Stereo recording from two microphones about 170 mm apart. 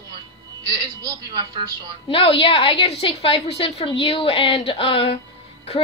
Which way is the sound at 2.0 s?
30° left (ahead or behind).